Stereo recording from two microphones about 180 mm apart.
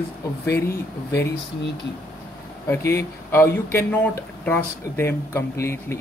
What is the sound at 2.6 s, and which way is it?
Speech, 15° left (ahead or behind).